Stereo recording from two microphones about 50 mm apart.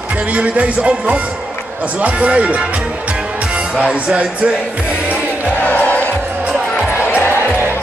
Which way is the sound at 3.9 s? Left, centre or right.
Right.